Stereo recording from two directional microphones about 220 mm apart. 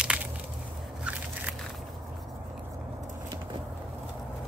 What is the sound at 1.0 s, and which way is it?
Biting, 5° right (ahead or behind).